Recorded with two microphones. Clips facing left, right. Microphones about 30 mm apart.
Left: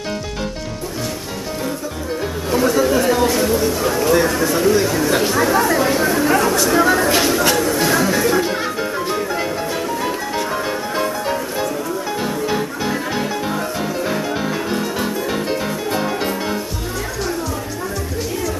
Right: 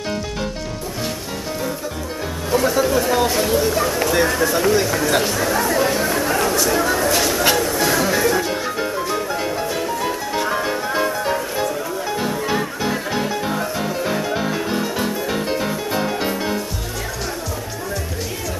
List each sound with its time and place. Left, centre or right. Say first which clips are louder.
2.5 s music: left 2 dB; centre
3.1 s speech: left 2 dB; centre
5.2 s speech: left 4 dB; centre
7.4 s chatter: left 1 dB; centre
8.4 s music: left 2 dB; centre